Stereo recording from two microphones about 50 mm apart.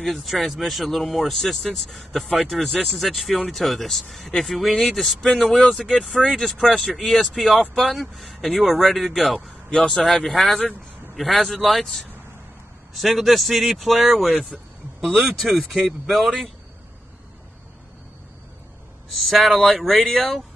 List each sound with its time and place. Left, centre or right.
0.0 s speech: centre
9.7 s speech: centre
15.4 s speech: centre
19.1 s speech: centre